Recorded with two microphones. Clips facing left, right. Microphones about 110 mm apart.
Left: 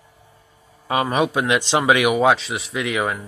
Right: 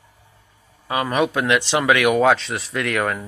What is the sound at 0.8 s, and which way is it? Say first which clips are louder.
Speech: left 1 dB; 20° left (ahead or behind).